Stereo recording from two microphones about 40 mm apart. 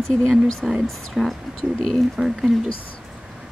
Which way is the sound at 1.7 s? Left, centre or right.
Centre.